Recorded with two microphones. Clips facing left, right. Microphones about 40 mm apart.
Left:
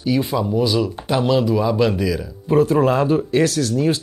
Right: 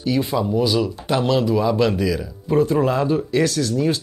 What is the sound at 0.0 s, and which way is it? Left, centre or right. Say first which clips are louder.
Speech: left 1 dB; centre.